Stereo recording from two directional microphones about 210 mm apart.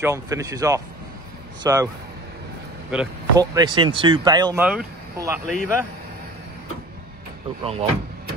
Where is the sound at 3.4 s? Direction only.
20° right (ahead or behind).